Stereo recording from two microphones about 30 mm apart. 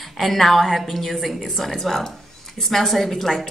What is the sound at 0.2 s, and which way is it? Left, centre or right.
A woman's voice, centre.